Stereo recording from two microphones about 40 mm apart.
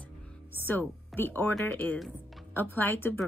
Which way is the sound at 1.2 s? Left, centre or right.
Left.